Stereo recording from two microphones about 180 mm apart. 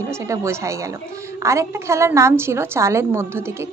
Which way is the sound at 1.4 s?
15° right (ahead or behind).